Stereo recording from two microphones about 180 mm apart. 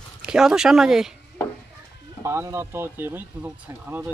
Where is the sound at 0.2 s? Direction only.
5° right (ahead or behind).